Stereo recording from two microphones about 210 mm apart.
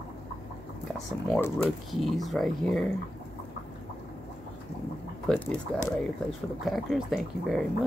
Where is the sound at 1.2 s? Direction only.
5° left (ahead or behind).